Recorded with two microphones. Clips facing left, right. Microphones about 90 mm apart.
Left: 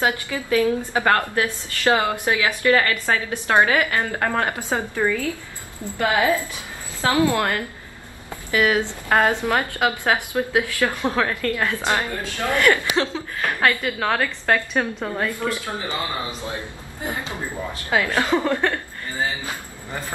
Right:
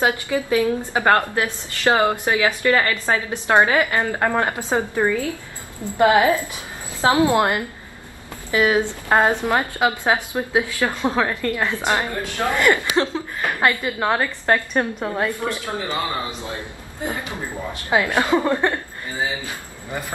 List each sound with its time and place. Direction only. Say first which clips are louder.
0.0 s a woman's voice: right 3 dB; 20° right (ahead or behind)
15.0 s a woman's voice: right 1 dB; 20° right (ahead or behind)
17.8 s a woman's voice: right 2 dB; 15° right (ahead or behind)